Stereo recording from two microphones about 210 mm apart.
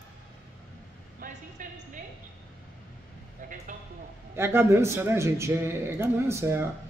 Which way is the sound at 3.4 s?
40° right (ahead or behind).